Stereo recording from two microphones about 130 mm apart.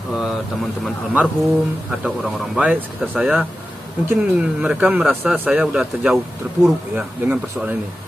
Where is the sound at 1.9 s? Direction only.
5° right (ahead or behind).